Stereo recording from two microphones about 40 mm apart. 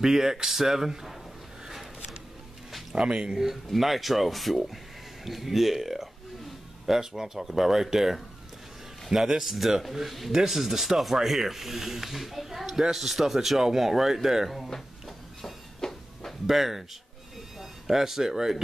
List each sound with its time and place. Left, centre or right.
0.0 s a man's voice: centre
1.7 s a sound: centre
2.9 s speech: right
3.3 s a man's voice: centre
14.7 s a sound: centre
16.4 s speech: centre